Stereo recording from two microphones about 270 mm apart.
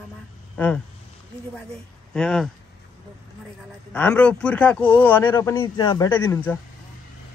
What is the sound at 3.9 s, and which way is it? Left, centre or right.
Speech, centre.